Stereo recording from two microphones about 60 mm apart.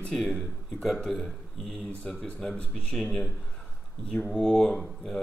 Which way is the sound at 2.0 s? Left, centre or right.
Centre.